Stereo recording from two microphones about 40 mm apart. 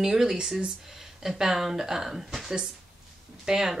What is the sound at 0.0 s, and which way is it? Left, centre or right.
Speech, centre.